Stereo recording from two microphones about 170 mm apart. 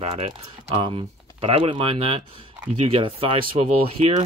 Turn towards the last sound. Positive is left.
turn(degrees=-40)  # may be behind; listen again after turning